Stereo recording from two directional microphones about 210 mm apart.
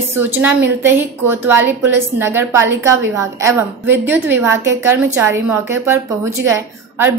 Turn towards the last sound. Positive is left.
turn(degrees=-10)  # may be behind; listen again after turning